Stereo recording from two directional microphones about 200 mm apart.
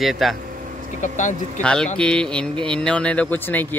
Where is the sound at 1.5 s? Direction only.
5° left (ahead or behind).